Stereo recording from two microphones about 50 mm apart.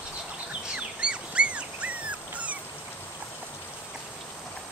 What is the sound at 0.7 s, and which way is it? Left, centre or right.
Dog, right.